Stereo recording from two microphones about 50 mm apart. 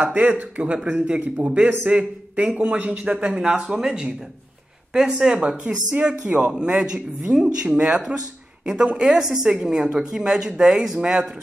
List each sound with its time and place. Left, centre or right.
0.0 s a man's voice: right